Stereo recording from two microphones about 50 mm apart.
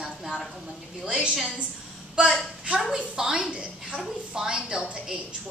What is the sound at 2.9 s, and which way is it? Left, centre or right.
A woman's voice, centre.